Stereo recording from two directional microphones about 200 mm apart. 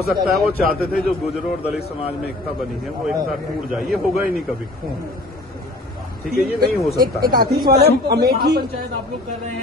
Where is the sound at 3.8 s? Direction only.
Centre (ahead or behind).